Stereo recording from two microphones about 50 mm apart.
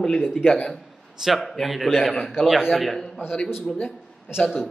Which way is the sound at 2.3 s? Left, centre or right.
Centre.